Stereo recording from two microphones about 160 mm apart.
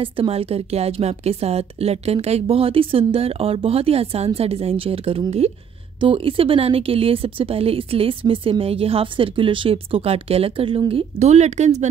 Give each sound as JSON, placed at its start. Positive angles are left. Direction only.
{"t": 0.0, "sound": "speech", "side_deg": -35}